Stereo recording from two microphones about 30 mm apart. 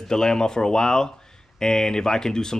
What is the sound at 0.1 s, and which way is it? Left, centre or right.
Speech, left.